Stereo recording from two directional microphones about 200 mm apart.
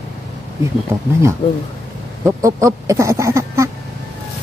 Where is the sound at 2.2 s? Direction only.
15° right (ahead or behind).